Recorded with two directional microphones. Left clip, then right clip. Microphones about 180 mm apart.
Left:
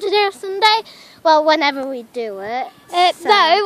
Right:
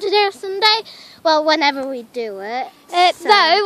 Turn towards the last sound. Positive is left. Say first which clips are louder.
# even
turn(degrees=-20)  # may be behind; listen again after turning